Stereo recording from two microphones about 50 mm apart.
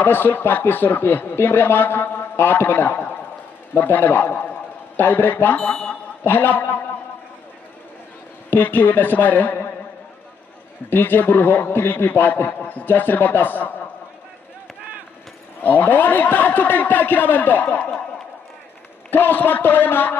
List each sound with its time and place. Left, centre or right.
0.0 s a man's voice: left
5.6 s speech: centre
6.2 s speech: left
8.5 s speech: left
10.9 s a man's voice: left
15.6 s speech: left
19.0 s speech: left